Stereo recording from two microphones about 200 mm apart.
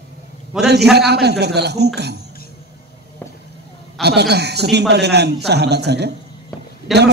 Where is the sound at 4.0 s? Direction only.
55° right (ahead or behind).